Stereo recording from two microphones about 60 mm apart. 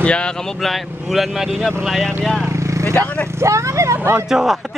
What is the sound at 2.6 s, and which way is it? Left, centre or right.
Vehicle, right.